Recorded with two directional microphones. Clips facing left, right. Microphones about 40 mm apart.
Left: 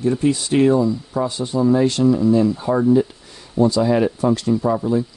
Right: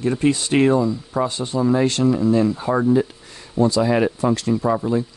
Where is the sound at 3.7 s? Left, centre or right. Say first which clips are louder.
Even; right.